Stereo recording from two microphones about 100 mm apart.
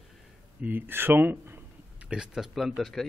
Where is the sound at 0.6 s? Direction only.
20° right (ahead or behind).